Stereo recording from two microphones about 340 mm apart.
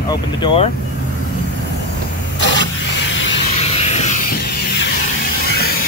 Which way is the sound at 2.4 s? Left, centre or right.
Left.